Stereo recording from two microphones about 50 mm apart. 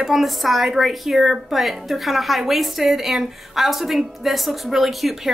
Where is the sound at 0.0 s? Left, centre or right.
Centre.